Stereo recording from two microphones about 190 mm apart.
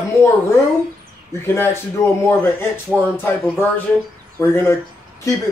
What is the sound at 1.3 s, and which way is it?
Speech, 15° left (ahead or behind).